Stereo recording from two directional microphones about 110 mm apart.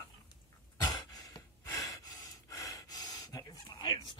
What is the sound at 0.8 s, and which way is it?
Gasp, 35° left (ahead or behind).